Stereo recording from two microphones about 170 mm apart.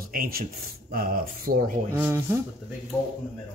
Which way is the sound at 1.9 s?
15° right (ahead or behind).